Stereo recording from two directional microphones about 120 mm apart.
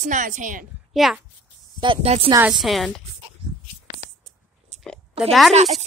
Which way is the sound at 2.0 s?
60° right (ahead or behind).